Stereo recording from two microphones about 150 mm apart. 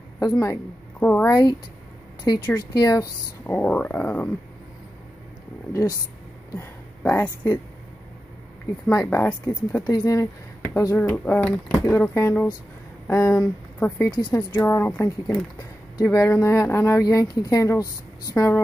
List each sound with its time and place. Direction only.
0.2 s a woman's voice: 20° left (ahead or behind)
1.3 s speech: 25° left (ahead or behind)
2.7 s speech: 25° left (ahead or behind)
3.4 s speech: 10° left (ahead or behind)
5.7 s speech: 20° left (ahead or behind)
8.9 s speech: 20° left (ahead or behind)
9.8 s speech: 25° left (ahead or behind)
11.0 s speech: 10° left (ahead or behind)